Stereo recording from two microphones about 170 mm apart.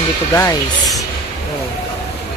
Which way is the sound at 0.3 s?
20° left (ahead or behind).